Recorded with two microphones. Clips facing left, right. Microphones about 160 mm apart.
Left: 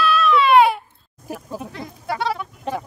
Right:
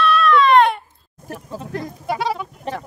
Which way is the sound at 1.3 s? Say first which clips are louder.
Left 1 dB; 10° left (ahead or behind).